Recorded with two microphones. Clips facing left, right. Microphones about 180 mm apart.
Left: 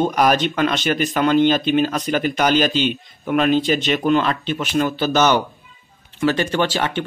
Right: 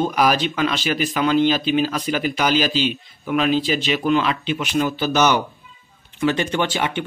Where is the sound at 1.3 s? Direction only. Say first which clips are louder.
Left 2 dB; 55° left (ahead or behind).